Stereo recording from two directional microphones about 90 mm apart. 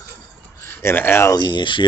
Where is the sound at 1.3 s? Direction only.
60° left (ahead or behind).